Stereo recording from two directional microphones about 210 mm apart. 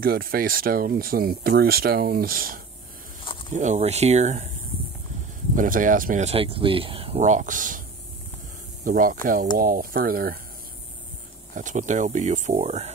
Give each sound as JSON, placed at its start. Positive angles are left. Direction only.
{"t": 0.0, "sound": "speech", "side_deg": -45}
{"t": 5.6, "sound": "speech", "side_deg": -40}
{"t": 8.8, "sound": "speech", "side_deg": -40}
{"t": 11.5, "sound": "speech", "side_deg": -35}